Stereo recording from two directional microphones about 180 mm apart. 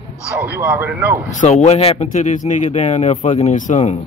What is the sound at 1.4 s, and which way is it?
A man's voice, 40° left (ahead or behind).